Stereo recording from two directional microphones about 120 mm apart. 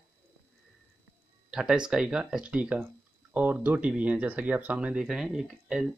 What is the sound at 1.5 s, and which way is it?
Speech, 5° right (ahead or behind).